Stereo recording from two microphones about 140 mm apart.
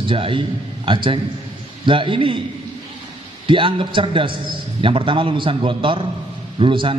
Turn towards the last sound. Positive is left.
turn(degrees=-35)  # may be behind; listen again after turning